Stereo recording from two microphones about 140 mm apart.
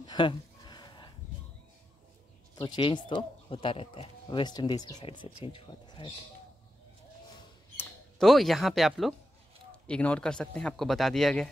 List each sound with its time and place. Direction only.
0.0 s a sound: 35° left (ahead or behind)
2.5 s speech: 30° left (ahead or behind)
8.2 s speech: centre (ahead or behind)